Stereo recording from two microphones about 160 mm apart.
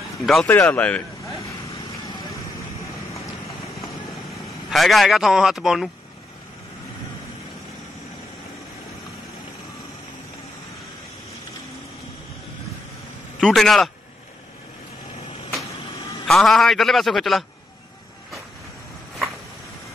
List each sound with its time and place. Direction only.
0.2 s speech: centre (ahead or behind)
0.5 s speech: 10° left (ahead or behind)
1.2 s vehicle: 20° left (ahead or behind)
4.6 s speech: centre (ahead or behind)
13.4 s speech: centre (ahead or behind)
16.3 s speech: centre (ahead or behind)